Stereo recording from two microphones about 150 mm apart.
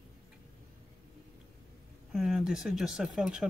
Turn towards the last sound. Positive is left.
turn(degrees=-5)  # may be behind; listen again after turning